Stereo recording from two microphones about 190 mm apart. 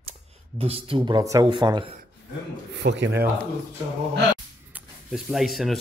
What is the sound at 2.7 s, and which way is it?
Speech, 65° right (ahead or behind).